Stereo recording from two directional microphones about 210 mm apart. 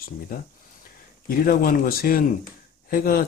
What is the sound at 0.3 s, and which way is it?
Speech, 45° left (ahead or behind).